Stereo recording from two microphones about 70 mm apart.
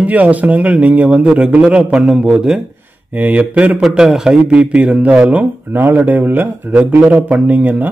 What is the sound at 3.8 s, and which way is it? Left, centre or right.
A man's voice, centre.